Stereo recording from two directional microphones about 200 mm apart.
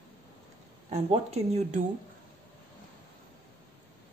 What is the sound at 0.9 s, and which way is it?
Speech, 30° right (ahead or behind).